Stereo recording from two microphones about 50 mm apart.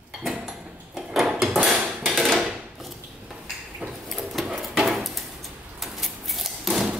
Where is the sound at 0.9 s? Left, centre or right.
Centre.